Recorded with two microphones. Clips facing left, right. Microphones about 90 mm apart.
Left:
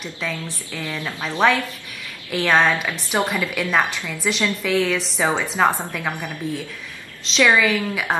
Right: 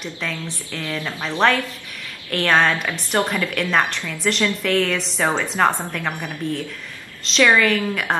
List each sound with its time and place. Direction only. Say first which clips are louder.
0.0 s a woman's voice: even; 5° left (ahead or behind)
0.7 s speech: right 1 dB; 15° left (ahead or behind)
1.0 s a woman's voice: even; centre (ahead or behind)
7.4 s a woman's voice: right 1 dB; 5° left (ahead or behind)